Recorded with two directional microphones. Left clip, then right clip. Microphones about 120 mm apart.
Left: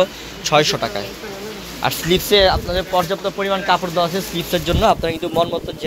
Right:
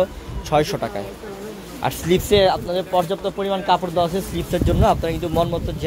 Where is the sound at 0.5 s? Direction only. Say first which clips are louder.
Left 4 dB; 35° right (ahead or behind); by 3.8 s 50° right (ahead or behind).